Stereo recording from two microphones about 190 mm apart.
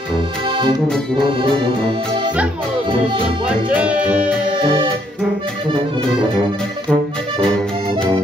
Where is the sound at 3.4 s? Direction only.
5° right (ahead or behind).